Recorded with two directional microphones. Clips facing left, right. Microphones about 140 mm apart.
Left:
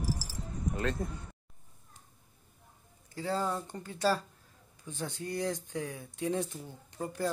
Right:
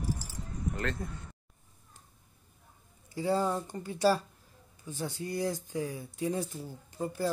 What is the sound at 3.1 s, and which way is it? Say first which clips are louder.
Speech: right 4 dB; 10° right (ahead or behind).